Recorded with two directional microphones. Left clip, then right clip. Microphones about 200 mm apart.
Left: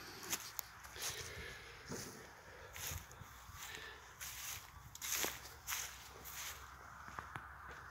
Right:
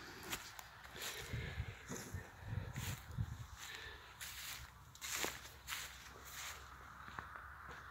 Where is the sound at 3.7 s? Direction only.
Centre (ahead or behind).